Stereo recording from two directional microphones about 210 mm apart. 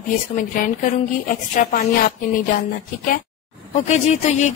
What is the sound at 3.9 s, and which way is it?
Speech, 30° left (ahead or behind).